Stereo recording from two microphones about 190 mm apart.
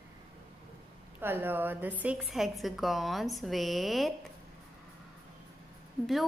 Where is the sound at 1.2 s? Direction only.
10° right (ahead or behind).